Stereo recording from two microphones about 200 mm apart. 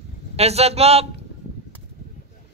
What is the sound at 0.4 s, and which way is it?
Speech, 30° right (ahead or behind).